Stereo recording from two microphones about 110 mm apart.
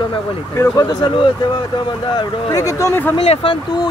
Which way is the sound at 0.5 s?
30° left (ahead or behind).